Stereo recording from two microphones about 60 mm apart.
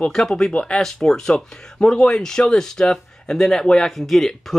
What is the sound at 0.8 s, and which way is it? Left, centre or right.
Speech, centre.